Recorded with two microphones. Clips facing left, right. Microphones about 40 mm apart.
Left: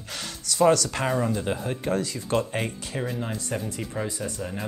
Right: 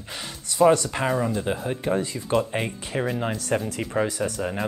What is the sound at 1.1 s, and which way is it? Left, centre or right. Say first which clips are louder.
Speech: right 1 dB; centre.